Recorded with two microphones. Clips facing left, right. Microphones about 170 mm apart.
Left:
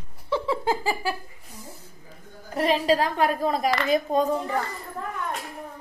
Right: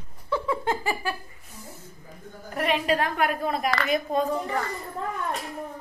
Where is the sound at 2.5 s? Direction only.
30° left (ahead or behind).